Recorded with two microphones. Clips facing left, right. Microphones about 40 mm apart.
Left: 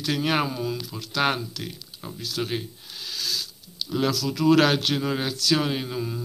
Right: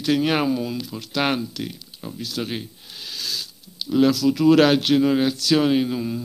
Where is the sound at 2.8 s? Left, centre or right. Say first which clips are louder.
Even; right.